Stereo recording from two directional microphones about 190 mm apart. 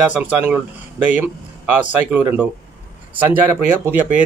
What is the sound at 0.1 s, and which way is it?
A man's voice, 10° right (ahead or behind).